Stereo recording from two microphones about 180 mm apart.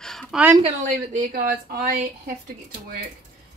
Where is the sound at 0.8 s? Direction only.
50° right (ahead or behind).